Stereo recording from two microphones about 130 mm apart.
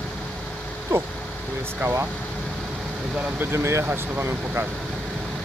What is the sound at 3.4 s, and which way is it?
Speech, 20° right (ahead or behind).